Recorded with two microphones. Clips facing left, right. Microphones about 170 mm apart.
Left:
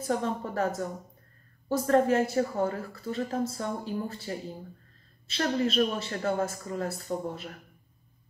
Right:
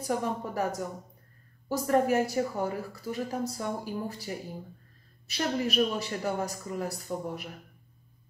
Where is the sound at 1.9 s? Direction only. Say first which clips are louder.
Left 1 dB; 10° right (ahead or behind).